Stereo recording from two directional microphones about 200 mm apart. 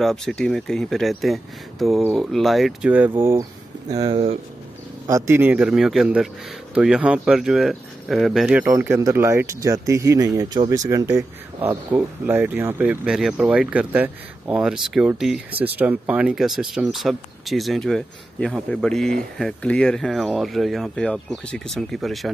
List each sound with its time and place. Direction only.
0.0 s speech: centre (ahead or behind)